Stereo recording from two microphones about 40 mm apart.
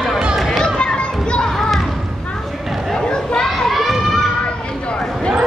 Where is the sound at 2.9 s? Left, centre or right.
Left.